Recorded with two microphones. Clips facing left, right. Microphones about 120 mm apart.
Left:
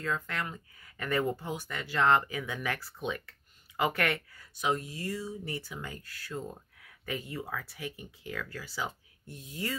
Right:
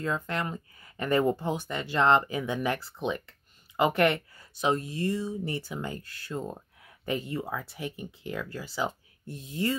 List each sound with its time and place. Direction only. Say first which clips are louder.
0.0 s speech: right 4 dB; 25° right (ahead or behind)